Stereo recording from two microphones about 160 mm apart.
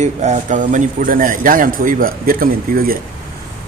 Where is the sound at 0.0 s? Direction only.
45° right (ahead or behind); by 3.0 s 65° right (ahead or behind).